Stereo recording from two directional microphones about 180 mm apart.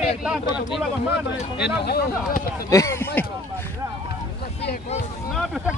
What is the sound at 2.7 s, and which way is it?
Speech, 15° left (ahead or behind).